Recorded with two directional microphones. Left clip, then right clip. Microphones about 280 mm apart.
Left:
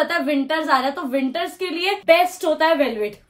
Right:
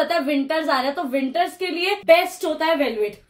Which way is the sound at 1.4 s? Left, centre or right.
Centre.